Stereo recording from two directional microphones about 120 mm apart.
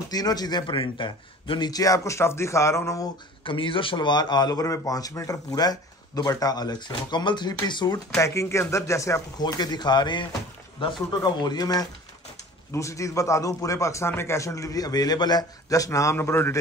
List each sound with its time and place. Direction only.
0.1 s a man's voice: 35° left (ahead or behind)
0.7 s a man's voice: 45° left (ahead or behind); by 3.1 s 25° left (ahead or behind)
3.4 s a man's voice: 45° left (ahead or behind)
8.2 s a man's voice: 25° left (ahead or behind)
9.4 s a man's voice: 35° left (ahead or behind); by 16.5 s 20° left (ahead or behind)